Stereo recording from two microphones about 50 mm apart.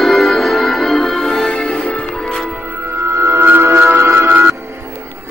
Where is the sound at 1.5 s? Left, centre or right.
Left.